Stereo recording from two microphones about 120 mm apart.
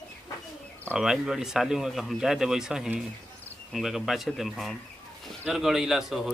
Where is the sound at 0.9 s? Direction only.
5° right (ahead or behind).